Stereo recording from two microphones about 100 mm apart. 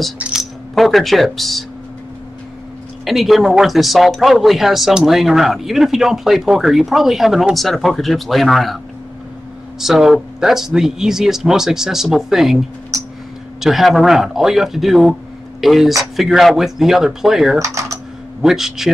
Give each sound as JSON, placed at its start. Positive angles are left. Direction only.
{"t": 0.2, "sound": "speech", "side_deg": -5}
{"t": 3.1, "sound": "speech", "side_deg": 0}
{"t": 13.6, "sound": "speech", "side_deg": 0}
{"t": 17.6, "sound": "speech", "side_deg": -30}
{"t": 18.4, "sound": "speech", "side_deg": -5}